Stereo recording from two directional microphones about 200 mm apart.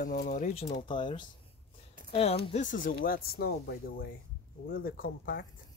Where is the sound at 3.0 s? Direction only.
50° left (ahead or behind).